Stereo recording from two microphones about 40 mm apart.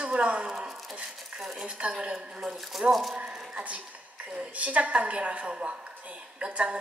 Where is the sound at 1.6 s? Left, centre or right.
Right.